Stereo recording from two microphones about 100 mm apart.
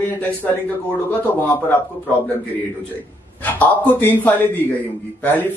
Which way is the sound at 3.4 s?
15° left (ahead or behind).